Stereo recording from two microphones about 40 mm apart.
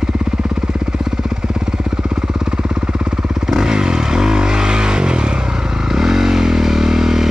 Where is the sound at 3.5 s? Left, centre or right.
Centre.